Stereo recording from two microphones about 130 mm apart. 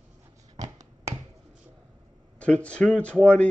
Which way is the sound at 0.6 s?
65° right (ahead or behind).